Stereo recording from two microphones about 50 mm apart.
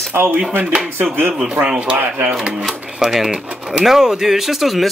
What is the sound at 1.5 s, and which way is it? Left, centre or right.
Speech, right.